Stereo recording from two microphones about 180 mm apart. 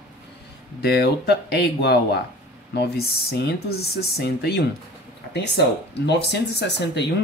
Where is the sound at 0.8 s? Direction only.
65° left (ahead or behind).